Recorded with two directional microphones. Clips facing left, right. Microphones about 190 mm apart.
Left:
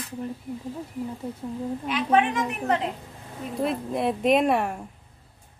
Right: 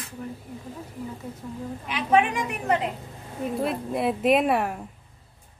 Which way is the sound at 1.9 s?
10° right (ahead or behind).